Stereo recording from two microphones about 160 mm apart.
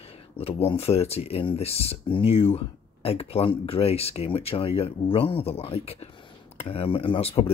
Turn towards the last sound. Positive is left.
turn(degrees=35)  # may be behind; listen again after turning